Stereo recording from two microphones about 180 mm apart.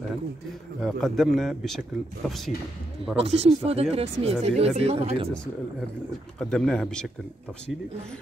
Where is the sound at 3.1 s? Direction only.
35° right (ahead or behind).